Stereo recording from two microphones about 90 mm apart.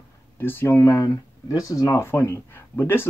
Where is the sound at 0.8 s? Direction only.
40° left (ahead or behind).